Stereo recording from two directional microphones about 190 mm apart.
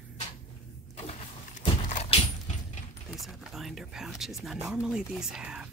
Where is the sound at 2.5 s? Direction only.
40° left (ahead or behind).